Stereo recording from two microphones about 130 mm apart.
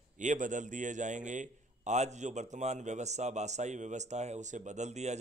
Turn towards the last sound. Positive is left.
turn(degrees=-60)  # may be behind; listen again after turning